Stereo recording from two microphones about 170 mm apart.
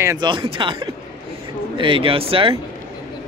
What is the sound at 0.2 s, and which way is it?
A man's voice, 30° right (ahead or behind).